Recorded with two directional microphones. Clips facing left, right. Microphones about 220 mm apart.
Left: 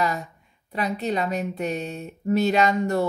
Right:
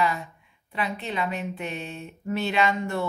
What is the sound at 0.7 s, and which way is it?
A woman's voice, 40° left (ahead or behind).